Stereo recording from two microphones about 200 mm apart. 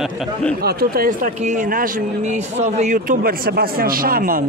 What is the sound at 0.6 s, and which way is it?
A man's voice, 50° right (ahead or behind).